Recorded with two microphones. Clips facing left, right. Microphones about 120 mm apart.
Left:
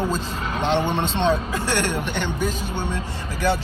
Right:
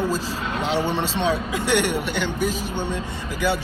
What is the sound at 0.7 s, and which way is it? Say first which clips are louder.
Speech: right 1 dB; 20° left (ahead or behind).